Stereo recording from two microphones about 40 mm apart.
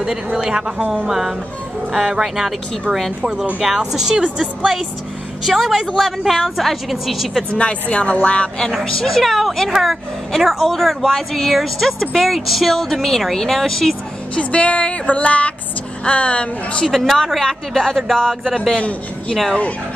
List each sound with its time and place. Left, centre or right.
0.0 s speech: centre
3.6 s speech: centre
5.4 s a woman's voice: centre
7.5 s a woman's voice: left
9.0 s speech: centre
9.7 s a woman's voice: centre
14.3 s speech: left
16.8 s a woman's voice: centre
18.8 s a man's voice: left